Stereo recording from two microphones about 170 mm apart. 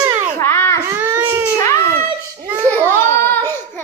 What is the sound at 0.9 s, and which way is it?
Baby cry, 10° right (ahead or behind).